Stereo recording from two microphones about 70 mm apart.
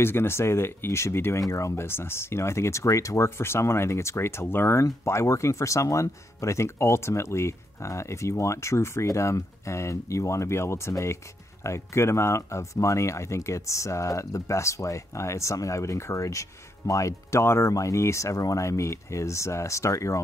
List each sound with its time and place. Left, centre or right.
0.0 s speech: left